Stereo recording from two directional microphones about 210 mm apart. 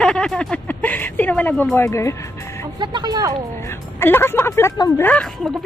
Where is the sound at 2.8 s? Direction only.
20° right (ahead or behind).